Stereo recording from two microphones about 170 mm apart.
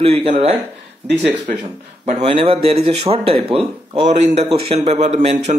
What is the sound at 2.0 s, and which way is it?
A man's voice, 40° right (ahead or behind).